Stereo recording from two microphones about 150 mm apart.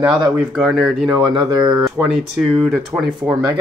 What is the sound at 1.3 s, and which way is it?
Speech, 30° right (ahead or behind).